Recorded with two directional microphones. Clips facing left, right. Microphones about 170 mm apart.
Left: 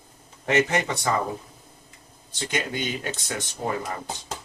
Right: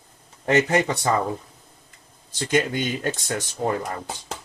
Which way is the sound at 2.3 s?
45° right (ahead or behind).